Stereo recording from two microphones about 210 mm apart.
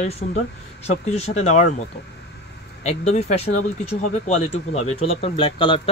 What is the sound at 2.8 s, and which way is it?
Speech, 30° left (ahead or behind).